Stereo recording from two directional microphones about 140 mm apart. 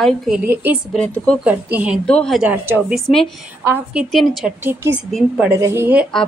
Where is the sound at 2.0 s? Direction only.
5° left (ahead or behind).